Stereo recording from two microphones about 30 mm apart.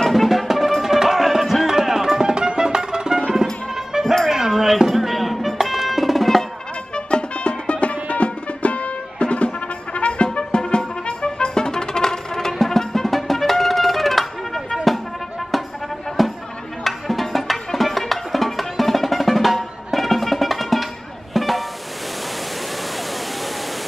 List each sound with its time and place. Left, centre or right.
0.1 s music: centre
0.8 s music: centre
1.7 s music: centre
4.0 s music: centre
4.3 s music: centre
7.1 s music: left
9.9 s trumpet: left; by 14.6 s centre
16.2 s music: centre